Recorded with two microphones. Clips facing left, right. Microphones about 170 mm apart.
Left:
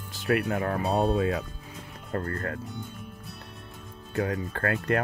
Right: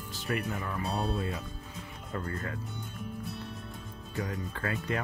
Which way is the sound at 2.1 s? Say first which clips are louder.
Left 5 dB; 60° left (ahead or behind).